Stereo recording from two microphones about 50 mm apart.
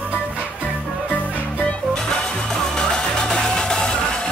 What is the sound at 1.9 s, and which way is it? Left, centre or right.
Music, centre.